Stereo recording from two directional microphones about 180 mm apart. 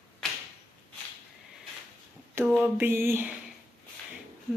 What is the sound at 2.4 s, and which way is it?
Speech, 15° right (ahead or behind).